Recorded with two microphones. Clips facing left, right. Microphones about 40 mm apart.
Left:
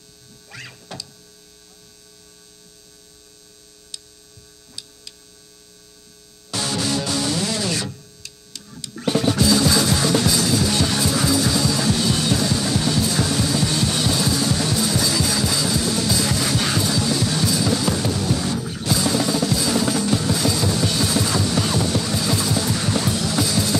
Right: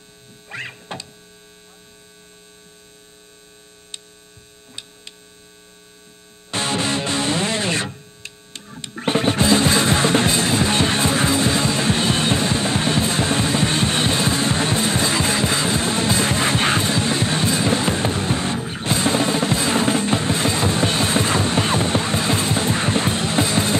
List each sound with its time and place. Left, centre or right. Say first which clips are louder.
0.5 s mains hum: right 6 dB; right
6.5 s music: right 2 dB; right